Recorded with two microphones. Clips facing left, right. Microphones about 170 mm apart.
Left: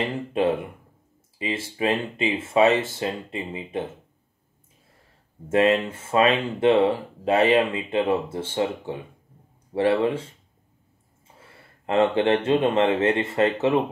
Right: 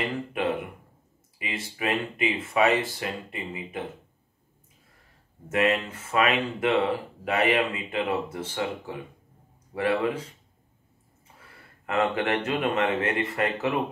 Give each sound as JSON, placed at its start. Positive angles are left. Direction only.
{"t": 0.3, "sound": "speech", "side_deg": 25}
{"t": 5.5, "sound": "speech", "side_deg": 30}
{"t": 11.3, "sound": "speech", "side_deg": 25}